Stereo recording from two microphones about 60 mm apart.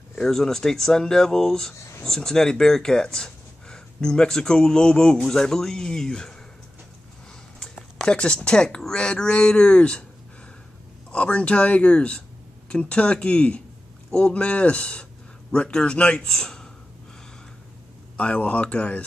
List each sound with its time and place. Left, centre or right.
0.2 s speech: centre
1.8 s speech: left
2.0 s speech: centre
7.6 s speech: centre
11.1 s speech: centre
18.1 s speech: left